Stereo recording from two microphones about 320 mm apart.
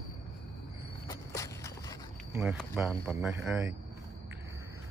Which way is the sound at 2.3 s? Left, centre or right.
Centre.